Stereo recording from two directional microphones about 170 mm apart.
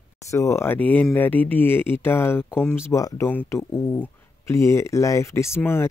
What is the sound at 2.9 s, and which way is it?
Speech, 20° left (ahead or behind).